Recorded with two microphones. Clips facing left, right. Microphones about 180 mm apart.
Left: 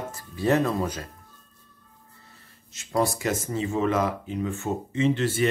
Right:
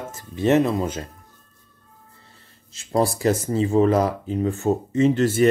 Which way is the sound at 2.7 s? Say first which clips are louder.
Right 4 dB; 30° right (ahead or behind).